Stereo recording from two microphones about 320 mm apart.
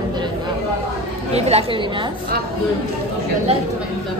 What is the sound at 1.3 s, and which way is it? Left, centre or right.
Speech, centre.